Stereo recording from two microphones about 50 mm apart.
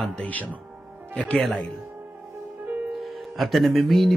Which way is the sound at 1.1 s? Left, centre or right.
Left.